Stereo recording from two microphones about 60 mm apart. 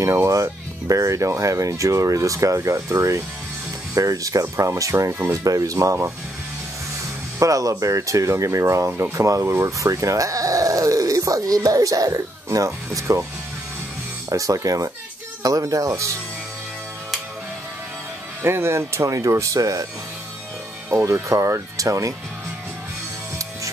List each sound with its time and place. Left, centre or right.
0.3 s speech: right
7.3 s speech: right
9.4 s speech: right
14.3 s speech: right
18.4 s speech: right
20.9 s speech: right